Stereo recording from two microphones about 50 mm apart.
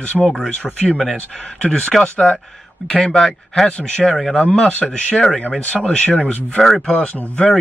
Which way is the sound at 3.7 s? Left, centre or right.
Left.